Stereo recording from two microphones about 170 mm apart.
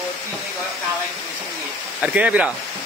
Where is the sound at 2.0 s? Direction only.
5° right (ahead or behind).